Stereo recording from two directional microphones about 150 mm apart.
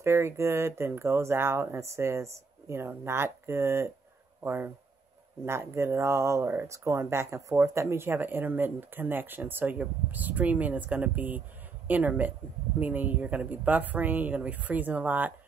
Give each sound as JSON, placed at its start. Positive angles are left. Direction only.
{"t": 0.0, "sound": "speech", "side_deg": -20}